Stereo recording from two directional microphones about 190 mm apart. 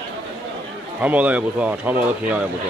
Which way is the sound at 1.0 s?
10° right (ahead or behind).